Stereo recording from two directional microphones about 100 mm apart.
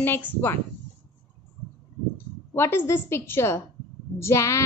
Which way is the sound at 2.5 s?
25° left (ahead or behind).